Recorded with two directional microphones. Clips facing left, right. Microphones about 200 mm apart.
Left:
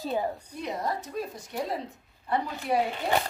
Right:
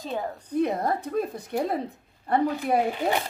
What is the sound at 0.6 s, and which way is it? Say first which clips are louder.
Speech: right 5 dB; 55° right (ahead or behind).